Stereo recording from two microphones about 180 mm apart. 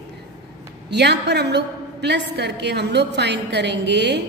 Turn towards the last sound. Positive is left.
turn(degrees=-70)  # may be behind; listen again after turning